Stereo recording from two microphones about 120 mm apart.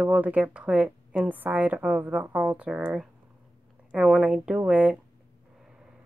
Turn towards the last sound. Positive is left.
turn(degrees=-10)  # may be behind; listen again after turning